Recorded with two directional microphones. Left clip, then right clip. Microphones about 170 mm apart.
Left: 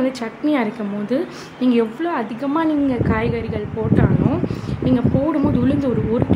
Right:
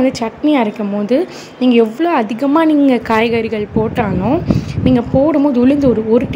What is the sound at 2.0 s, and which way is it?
A woman's voice, 40° right (ahead or behind).